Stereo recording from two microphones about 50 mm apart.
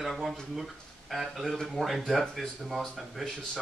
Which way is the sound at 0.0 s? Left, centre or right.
Centre.